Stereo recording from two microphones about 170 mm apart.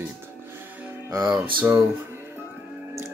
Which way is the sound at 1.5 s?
15° right (ahead or behind).